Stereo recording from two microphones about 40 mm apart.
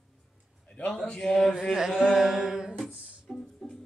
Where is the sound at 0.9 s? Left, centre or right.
Centre.